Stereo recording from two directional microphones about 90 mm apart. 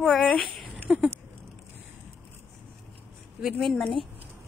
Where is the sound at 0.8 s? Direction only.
15° right (ahead or behind).